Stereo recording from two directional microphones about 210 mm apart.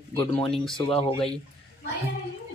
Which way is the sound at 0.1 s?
25° left (ahead or behind).